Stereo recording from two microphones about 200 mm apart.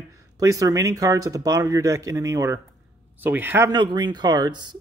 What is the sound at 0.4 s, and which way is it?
Speech, 15° right (ahead or behind).